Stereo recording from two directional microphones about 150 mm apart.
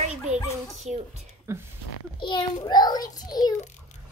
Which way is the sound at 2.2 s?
30° left (ahead or behind).